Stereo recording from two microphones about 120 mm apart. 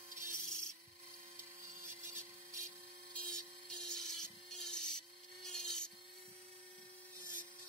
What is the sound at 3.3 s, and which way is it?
Wood, 5° left (ahead or behind).